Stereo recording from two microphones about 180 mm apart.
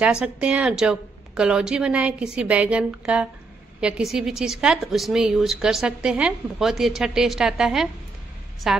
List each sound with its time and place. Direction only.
0.0 s speech: 5° right (ahead or behind)